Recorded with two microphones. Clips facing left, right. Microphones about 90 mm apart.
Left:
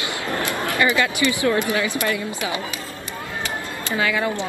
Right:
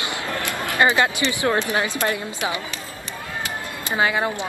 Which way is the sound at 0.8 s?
30° right (ahead or behind).